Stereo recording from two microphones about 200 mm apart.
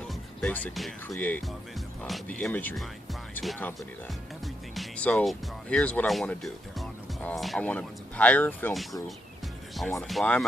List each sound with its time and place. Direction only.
0.1 s speech: 5° left (ahead or behind)
4.7 s speech: 5° left (ahead or behind)